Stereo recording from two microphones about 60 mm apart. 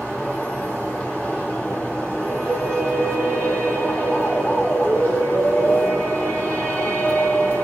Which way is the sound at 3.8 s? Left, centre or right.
Left.